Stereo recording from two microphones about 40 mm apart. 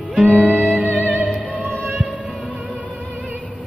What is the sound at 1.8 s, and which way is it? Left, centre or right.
Music, right.